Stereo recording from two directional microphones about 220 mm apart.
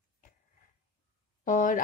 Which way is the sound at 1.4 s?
35° left (ahead or behind).